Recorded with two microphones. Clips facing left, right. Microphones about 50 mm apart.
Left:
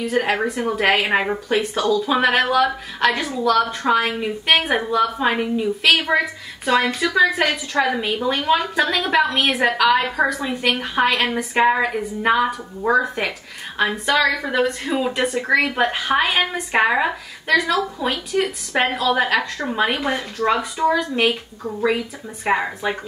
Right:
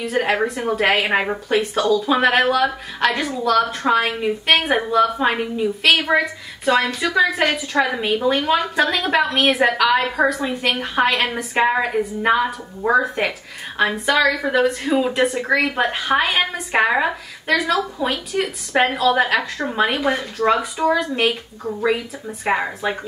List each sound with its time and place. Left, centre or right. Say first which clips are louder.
0.0 s speech: right 1 dB; centre